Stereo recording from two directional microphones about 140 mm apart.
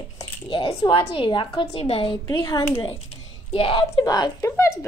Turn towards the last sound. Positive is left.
turn(degrees=25)  # may be behind; listen again after turning